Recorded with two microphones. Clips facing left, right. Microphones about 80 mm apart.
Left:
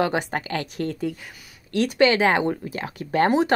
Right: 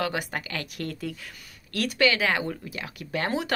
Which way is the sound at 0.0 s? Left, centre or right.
Left.